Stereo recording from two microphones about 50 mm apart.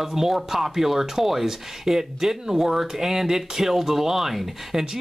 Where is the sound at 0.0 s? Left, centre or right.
Centre.